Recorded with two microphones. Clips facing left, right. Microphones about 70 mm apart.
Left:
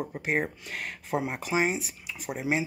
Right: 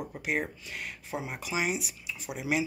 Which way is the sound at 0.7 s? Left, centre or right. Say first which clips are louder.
Left 6 dB; left.